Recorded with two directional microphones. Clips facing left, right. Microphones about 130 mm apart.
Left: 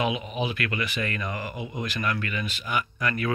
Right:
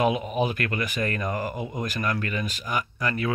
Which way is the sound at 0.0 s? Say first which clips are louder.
Right 4 dB; 45° right (ahead or behind).